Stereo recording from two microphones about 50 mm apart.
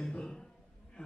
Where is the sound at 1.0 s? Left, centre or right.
Left.